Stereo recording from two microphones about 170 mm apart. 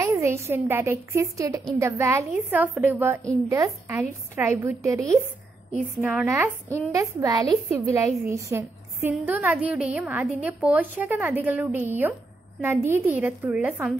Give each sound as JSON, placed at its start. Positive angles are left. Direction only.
{"t": 0.0, "sound": "a woman's voice", "side_deg": -15}